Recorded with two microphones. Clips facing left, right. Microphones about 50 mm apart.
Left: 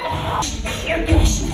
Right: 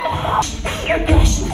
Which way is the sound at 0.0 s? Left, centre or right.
Right.